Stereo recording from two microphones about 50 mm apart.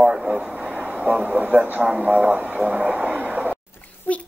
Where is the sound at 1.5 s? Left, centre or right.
Right.